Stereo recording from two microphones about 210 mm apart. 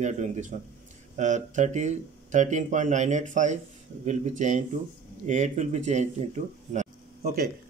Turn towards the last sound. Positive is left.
turn(degrees=-45)  # may be behind; listen again after turning